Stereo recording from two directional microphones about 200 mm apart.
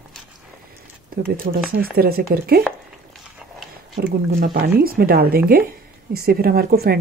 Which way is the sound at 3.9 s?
45° right (ahead or behind).